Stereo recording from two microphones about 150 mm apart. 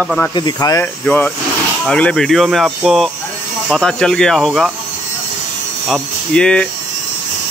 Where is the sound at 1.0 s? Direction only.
10° left (ahead or behind).